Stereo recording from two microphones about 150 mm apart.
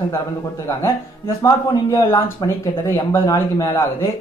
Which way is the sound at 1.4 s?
20° left (ahead or behind).